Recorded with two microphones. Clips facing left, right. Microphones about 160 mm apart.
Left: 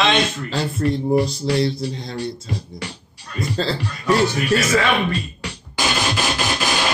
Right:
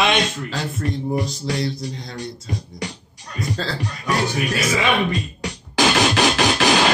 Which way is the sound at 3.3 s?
30° left (ahead or behind).